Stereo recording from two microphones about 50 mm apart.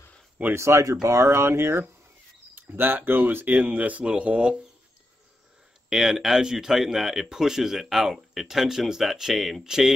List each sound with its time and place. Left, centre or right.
0.6 s speech: right
1.0 s speech: right
2.5 s speech: right
3.5 s speech: right
5.9 s speech: centre